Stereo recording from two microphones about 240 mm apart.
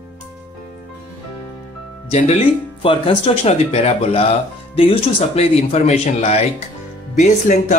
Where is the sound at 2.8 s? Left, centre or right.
Left.